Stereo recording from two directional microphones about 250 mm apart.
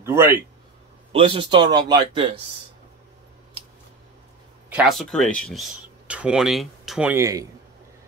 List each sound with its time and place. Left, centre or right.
0.0 s speech: centre
1.1 s speech: right
4.6 s speech: centre